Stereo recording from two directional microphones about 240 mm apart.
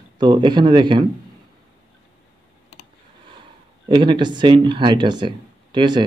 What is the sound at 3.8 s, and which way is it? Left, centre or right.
Speech, centre.